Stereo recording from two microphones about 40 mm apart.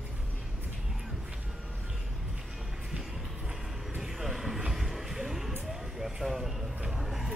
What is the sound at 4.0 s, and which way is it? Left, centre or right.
Vehicle, centre.